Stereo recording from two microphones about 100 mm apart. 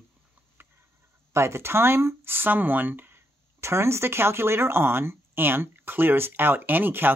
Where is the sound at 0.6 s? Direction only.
20° right (ahead or behind).